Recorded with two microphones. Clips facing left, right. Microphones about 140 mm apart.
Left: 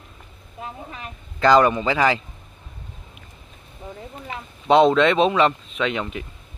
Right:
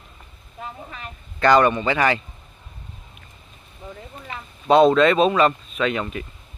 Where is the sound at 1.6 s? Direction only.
10° left (ahead or behind).